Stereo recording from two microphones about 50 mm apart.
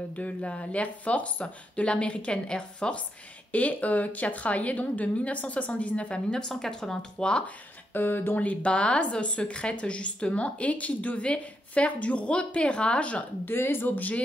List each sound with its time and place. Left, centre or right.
0.1 s a woman's voice: left
3.5 s a woman's voice: left
7.9 s speech: left
8.4 s a woman's voice: left
13.5 s speech: left
13.8 s speech: left